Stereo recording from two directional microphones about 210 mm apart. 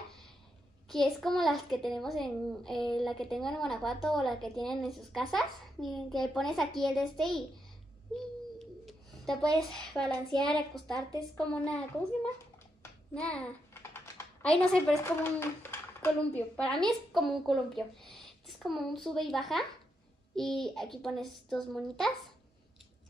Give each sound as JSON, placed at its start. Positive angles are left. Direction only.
{"t": 0.8, "sound": "a child's voice", "side_deg": 0}
{"t": 8.5, "sound": "bird", "side_deg": 0}
{"t": 9.6, "sound": "a child's voice", "side_deg": 5}
{"t": 11.0, "sound": "a woman's voice", "side_deg": -20}
{"t": 11.3, "sound": "a child's voice", "side_deg": 5}